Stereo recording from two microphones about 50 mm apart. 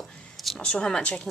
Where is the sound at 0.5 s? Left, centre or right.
Centre.